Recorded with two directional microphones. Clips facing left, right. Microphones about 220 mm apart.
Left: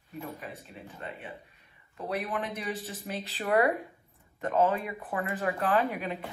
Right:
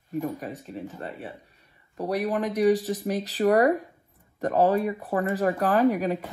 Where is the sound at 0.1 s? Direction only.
45° right (ahead or behind).